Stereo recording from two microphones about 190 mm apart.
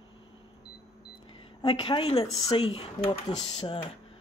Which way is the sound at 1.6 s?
25° left (ahead or behind).